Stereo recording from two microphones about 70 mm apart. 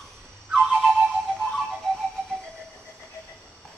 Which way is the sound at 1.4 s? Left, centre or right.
Centre.